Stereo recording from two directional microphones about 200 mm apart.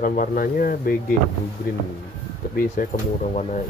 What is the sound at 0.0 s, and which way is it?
Speech, 45° left (ahead or behind).